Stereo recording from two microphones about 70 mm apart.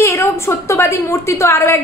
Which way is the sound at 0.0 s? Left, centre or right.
Left.